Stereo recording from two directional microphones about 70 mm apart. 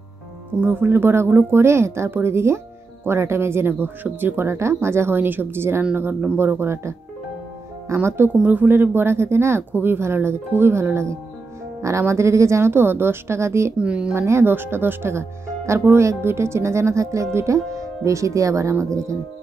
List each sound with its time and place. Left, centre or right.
0.6 s speech: right
8.4 s speech: right
13.7 s speech: centre
14.1 s speech: right